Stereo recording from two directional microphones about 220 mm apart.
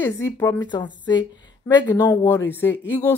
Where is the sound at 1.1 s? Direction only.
20° left (ahead or behind).